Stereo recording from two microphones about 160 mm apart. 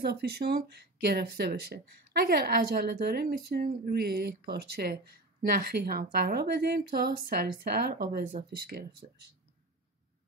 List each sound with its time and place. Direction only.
0.0 s speech: 85° right